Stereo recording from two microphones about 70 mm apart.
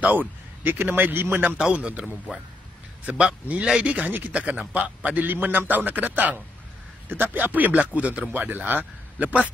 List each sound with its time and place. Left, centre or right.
0.7 s a man's voice: right
1.6 s a man's voice: centre
3.1 s a man's voice: centre